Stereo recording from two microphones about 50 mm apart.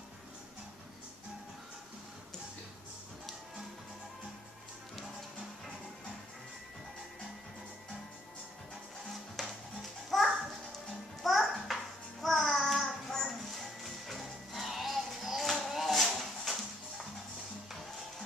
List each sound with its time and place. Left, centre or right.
9.4 s music: centre
10.1 s children playing: centre
11.2 s music: centre